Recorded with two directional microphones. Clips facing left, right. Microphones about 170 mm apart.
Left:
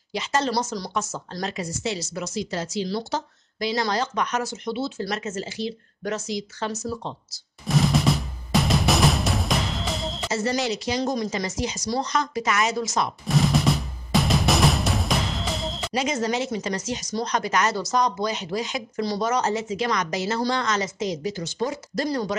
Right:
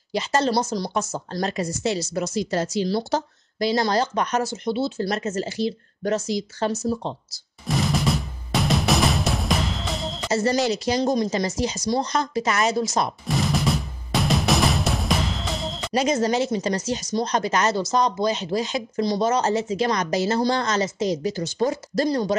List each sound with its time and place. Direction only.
0.1 s speech: 35° right (ahead or behind)
1.3 s a woman's voice: 45° right (ahead or behind)
7.6 s music: centre (ahead or behind)
10.3 s speech: 40° right (ahead or behind)
11.0 s speech: 25° right (ahead or behind)
13.3 s music: centre (ahead or behind)
15.9 s speech: 40° right (ahead or behind)